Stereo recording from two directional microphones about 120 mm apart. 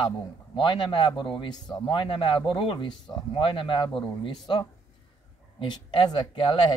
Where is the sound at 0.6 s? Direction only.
45° left (ahead or behind).